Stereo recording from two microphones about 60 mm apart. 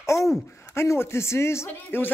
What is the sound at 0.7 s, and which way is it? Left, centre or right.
Speech, left.